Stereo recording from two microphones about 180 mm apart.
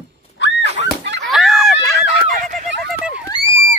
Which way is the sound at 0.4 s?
75° left (ahead or behind).